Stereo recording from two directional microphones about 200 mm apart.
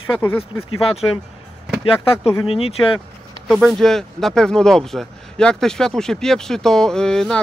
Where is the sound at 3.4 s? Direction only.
Centre (ahead or behind).